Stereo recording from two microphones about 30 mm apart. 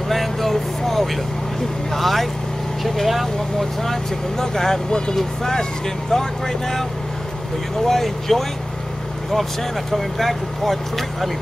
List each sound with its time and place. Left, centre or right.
0.1 s vehicle: centre
1.9 s speech: centre